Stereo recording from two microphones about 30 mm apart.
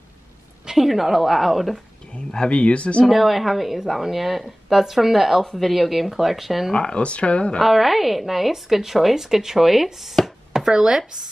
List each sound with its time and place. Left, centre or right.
0.7 s speech: centre
2.5 s speech: left
3.1 s a woman's voice: centre
6.7 s speech: left
7.6 s speech: centre
10.7 s speech: right